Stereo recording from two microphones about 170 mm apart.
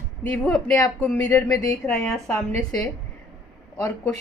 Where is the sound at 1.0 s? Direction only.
10° left (ahead or behind).